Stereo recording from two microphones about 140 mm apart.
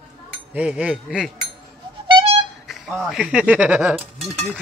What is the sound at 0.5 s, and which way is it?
Speech, 10° right (ahead or behind).